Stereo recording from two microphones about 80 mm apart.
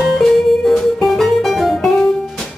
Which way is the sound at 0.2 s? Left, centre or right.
Centre.